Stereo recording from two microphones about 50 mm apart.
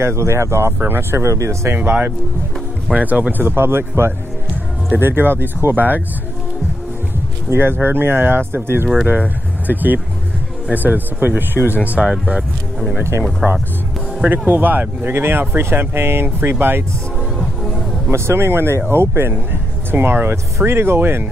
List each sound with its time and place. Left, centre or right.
0.0 s speech: right
0.7 s speech: right
1.2 s speech: right
1.7 s speech: right
2.9 s speech: right
4.9 s speech: right
7.5 s speech: right
9.7 s speech: right
11.6 s speech: left
12.0 s speech: centre
14.2 s speech: right
17.4 s music: centre
18.1 s speech: right